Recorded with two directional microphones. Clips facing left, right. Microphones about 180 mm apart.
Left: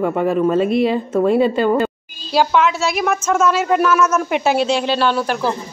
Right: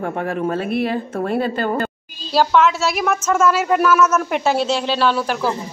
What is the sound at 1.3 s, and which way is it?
Speech, 50° right (ahead or behind).